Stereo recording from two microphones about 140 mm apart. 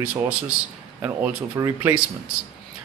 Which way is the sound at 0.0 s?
15° right (ahead or behind).